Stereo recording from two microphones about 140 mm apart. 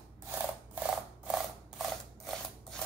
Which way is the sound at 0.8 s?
5° right (ahead or behind).